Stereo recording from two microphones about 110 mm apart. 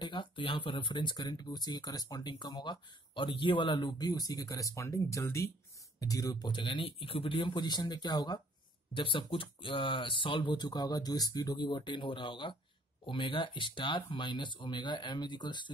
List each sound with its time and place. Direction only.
0.0 s speech: 50° left (ahead or behind)
8.9 s speech: 50° left (ahead or behind)